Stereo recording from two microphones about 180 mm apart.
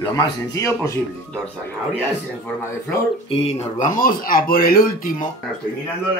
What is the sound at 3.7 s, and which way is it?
Speech, 45° left (ahead or behind).